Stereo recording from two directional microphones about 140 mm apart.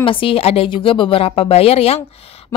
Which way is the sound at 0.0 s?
40° left (ahead or behind).